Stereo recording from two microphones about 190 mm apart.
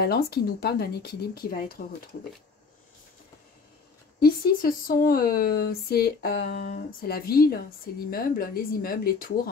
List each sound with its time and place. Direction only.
0.0 s speech: 55° left (ahead or behind)
4.2 s speech: 50° left (ahead or behind)